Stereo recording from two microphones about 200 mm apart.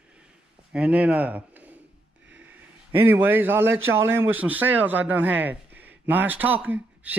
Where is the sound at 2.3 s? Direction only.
10° right (ahead or behind).